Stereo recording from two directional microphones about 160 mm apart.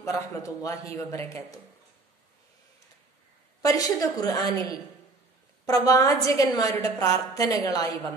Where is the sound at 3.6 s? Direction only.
20° left (ahead or behind).